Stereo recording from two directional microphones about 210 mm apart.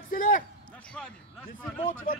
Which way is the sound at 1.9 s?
40° left (ahead or behind).